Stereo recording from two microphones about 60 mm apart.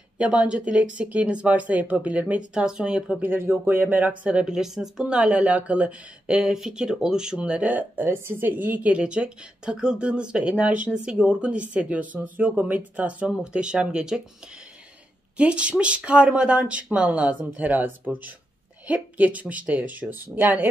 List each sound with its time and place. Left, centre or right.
0.2 s speech: centre
3.3 s speech: right
8.1 s speech: right; by 14.2 s centre
15.3 s speech: right